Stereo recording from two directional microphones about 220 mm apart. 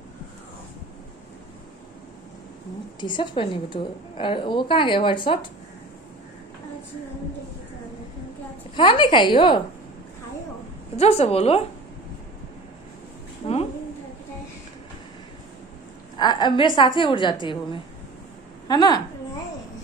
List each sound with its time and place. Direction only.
3.0 s a woman's voice: 20° left (ahead or behind)
8.7 s a woman's voice: 20° left (ahead or behind)
11.0 s a woman's voice: 30° left (ahead or behind)
13.4 s a sound: 25° left (ahead or behind)
16.2 s a woman's voice: 20° left (ahead or behind)
18.7 s a woman's voice: 20° left (ahead or behind)